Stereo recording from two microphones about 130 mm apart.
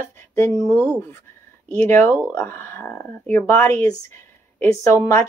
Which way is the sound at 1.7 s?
20° left (ahead or behind).